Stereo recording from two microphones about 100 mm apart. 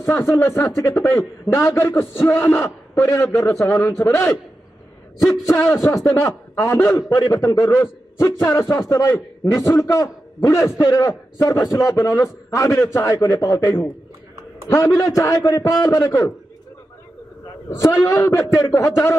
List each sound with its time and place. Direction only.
0.0 s a man's voice: 30° left (ahead or behind)
11.1 s a man's voice: 30° left (ahead or behind)
15.0 s a man's voice: 35° left (ahead or behind)
17.6 s a man's voice: 30° left (ahead or behind)